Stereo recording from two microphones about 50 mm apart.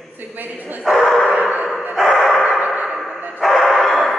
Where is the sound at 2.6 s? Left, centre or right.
Right.